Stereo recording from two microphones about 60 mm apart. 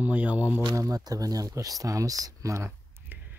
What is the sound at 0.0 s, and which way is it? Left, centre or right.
Speech, right.